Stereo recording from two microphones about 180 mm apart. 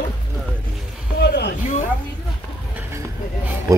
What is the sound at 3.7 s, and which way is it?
Speech, 20° right (ahead or behind).